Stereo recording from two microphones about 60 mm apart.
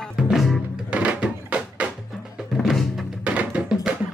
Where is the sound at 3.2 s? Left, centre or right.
Right.